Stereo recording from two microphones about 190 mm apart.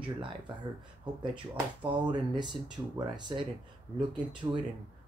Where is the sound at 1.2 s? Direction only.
25° right (ahead or behind).